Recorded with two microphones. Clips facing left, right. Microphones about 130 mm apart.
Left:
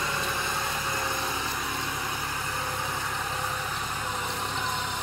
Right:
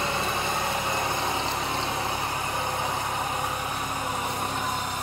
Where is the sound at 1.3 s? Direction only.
25° right (ahead or behind).